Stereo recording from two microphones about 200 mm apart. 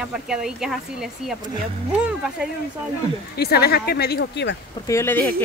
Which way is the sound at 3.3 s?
50° left (ahead or behind).